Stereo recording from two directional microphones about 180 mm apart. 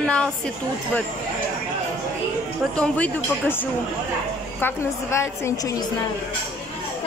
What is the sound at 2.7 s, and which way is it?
A woman's voice, 5° left (ahead or behind).